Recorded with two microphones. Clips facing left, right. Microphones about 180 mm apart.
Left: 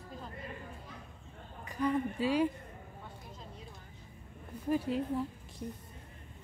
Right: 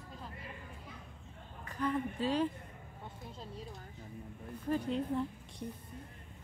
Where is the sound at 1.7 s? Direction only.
10° left (ahead or behind).